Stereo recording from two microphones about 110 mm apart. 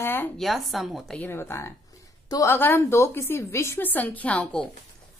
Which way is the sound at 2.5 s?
20° left (ahead or behind).